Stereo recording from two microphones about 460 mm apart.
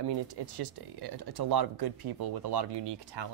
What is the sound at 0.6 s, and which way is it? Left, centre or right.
Speech, right.